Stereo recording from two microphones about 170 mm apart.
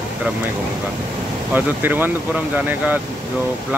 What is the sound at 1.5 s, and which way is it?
Speech, 10° right (ahead or behind).